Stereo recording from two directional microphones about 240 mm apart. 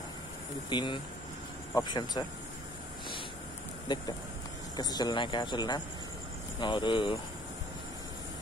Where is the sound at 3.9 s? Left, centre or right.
Centre.